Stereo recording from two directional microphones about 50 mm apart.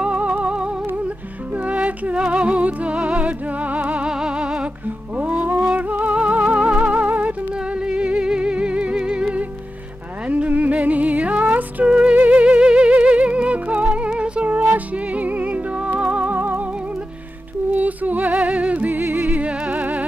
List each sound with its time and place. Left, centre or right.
0.0 s music: right
4.1 s music: centre
4.8 s music: right
10.2 s music: right
16.3 s music: right
17.7 s music: right